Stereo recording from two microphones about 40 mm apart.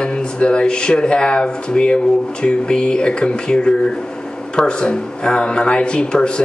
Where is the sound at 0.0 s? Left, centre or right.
Left.